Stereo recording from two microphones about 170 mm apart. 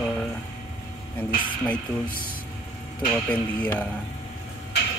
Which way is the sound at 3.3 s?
10° left (ahead or behind).